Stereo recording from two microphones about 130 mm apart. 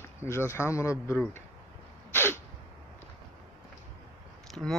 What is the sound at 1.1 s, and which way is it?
Speech, 10° left (ahead or behind).